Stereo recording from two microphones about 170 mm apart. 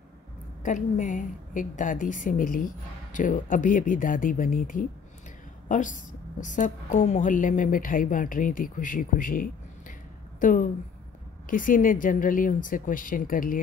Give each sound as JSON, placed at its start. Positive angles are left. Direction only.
{"t": 0.7, "sound": "a woman's voice", "side_deg": 50}